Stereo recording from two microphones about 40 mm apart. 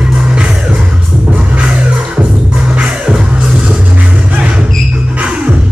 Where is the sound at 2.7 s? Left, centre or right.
Right.